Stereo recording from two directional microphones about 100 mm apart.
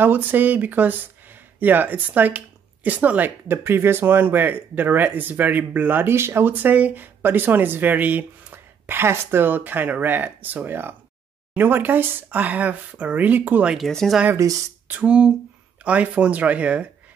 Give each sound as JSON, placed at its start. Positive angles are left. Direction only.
{"t": 0.0, "sound": "speech", "side_deg": -20}
{"t": 13.7, "sound": "speech", "side_deg": 0}
{"t": 14.3, "sound": "speech", "side_deg": -35}
{"t": 14.9, "sound": "speech", "side_deg": -10}